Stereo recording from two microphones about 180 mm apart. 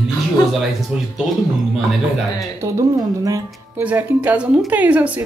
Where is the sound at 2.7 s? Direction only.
15° right (ahead or behind).